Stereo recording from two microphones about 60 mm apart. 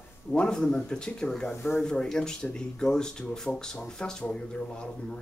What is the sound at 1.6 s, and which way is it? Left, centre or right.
Speech, left.